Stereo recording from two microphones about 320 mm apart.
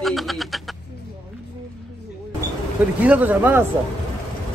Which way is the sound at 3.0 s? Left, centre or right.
Centre.